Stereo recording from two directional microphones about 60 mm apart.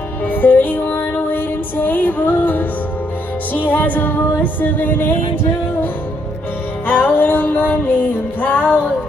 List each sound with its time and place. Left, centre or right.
0.3 s music: left
6.9 s music: left